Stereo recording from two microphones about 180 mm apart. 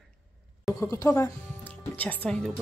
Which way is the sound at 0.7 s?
15° left (ahead or behind).